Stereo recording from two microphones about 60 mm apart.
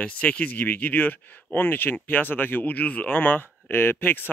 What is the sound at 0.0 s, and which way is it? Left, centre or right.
Speech, left.